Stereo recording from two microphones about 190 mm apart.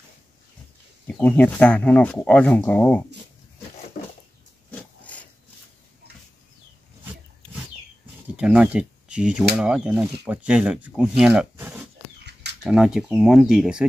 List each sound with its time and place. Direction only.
1.0 s speech: 5° left (ahead or behind)
3.9 s a sound: 45° left (ahead or behind)
4.6 s dog: 5° left (ahead or behind)
8.4 s speech: 5° right (ahead or behind)